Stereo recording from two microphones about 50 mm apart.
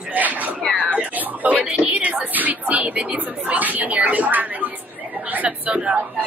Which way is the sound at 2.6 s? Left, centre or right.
Right.